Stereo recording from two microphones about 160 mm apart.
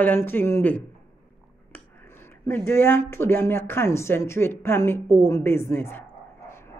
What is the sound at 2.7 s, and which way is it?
A woman's voice, 15° left (ahead or behind).